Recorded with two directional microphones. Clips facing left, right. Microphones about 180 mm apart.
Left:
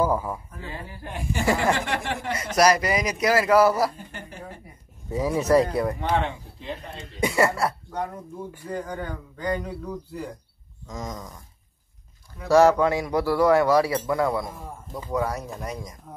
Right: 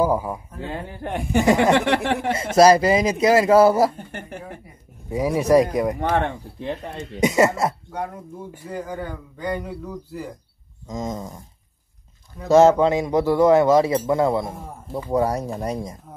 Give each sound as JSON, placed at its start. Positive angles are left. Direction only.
{"t": 0.0, "sound": "speech", "side_deg": -15}
{"t": 0.7, "sound": "speech", "side_deg": -60}
{"t": 1.4, "sound": "speech", "side_deg": -20}
{"t": 1.7, "sound": "speech", "side_deg": -65}
{"t": 2.3, "sound": "speech", "side_deg": -25}
{"t": 3.9, "sound": "a sound", "side_deg": -55}
{"t": 5.1, "sound": "speech", "side_deg": -15}
{"t": 5.9, "sound": "speech", "side_deg": -50}
{"t": 7.2, "sound": "speech", "side_deg": -20}
{"t": 8.6, "sound": "speech", "side_deg": -5}
{"t": 10.9, "sound": "speech", "side_deg": -25}
{"t": 12.4, "sound": "speech", "side_deg": -20}